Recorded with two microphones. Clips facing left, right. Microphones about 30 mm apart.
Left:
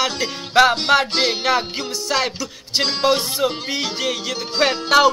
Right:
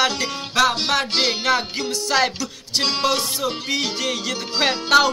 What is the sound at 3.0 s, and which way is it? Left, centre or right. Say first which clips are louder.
Music: left 3 dB; centre.